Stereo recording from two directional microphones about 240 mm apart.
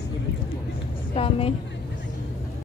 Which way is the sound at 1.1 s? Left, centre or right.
Left.